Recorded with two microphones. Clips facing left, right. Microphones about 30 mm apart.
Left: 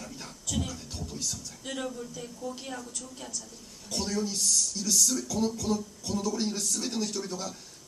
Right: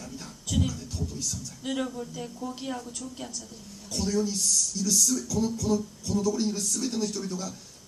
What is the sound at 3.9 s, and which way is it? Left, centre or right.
Speech, centre.